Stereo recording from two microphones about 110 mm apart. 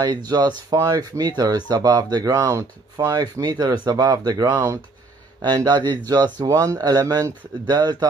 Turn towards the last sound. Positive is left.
turn(degrees=-40)  # may be behind; listen again after turning